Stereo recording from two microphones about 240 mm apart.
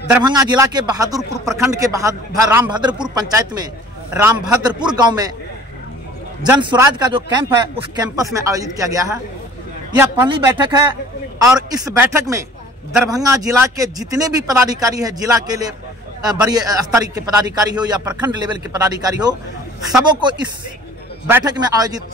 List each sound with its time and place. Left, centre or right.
0.1 s speech: centre
6.4 s speech: centre